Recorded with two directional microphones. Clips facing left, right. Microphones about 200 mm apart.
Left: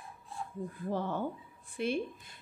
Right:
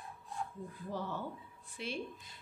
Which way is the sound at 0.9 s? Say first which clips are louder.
Left 6 dB; 55° left (ahead or behind).